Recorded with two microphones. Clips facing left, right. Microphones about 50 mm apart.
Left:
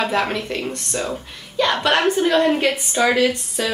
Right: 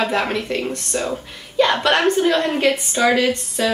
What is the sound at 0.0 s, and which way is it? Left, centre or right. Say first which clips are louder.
A woman's voice: right 1 dB; centre.